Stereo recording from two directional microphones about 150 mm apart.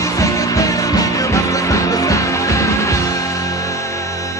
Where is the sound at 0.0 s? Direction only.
20° left (ahead or behind).